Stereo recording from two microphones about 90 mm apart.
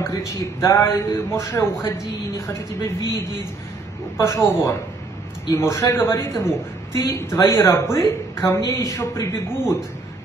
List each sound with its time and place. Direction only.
0.6 s speech: 30° left (ahead or behind)
4.3 s a man's voice: 35° left (ahead or behind)